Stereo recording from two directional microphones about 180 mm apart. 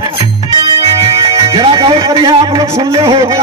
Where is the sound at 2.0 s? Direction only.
20° right (ahead or behind).